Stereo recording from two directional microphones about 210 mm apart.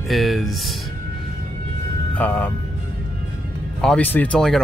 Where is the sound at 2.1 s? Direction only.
10° left (ahead or behind).